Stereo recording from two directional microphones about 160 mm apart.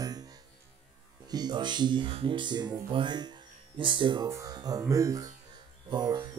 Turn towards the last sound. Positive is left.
turn(degrees=-25)  # may be behind; listen again after turning